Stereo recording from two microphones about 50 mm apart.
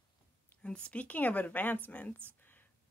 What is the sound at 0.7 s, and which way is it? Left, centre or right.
Speech, left.